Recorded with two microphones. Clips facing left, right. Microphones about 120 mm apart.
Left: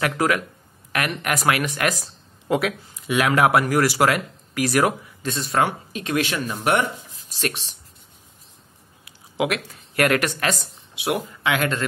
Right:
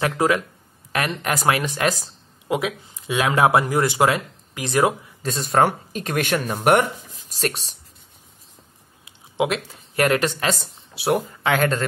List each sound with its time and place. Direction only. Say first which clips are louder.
0.0 s speech: right 1 dB; 25° right (ahead or behind)
2.4 s speech: left 2 dB; 15° right (ahead or behind)
3.1 s speech: even; 25° right (ahead or behind)
5.2 s speech: right 3 dB; 40° right (ahead or behind)
9.0 s speech: right 1 dB; 25° right (ahead or behind)